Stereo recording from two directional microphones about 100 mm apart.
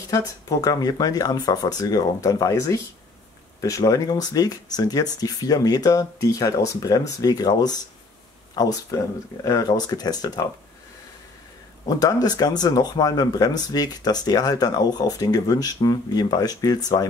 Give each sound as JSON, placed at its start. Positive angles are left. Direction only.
{"t": 0.1, "sound": "speech", "side_deg": 40}
{"t": 12.0, "sound": "speech", "side_deg": 40}